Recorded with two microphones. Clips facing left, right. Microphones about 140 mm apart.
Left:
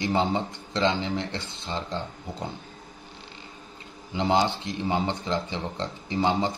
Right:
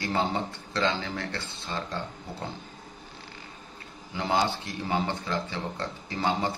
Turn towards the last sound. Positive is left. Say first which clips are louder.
# left 4 dB
turn(degrees=20)  # may be behind; listen again after turning